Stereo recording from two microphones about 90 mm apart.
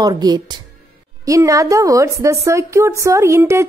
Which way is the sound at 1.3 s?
35° right (ahead or behind).